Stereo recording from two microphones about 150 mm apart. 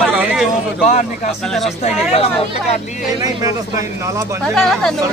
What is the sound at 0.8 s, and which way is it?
Speech, 50° left (ahead or behind).